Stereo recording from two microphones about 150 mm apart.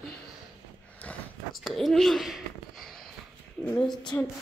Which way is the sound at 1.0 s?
10° left (ahead or behind).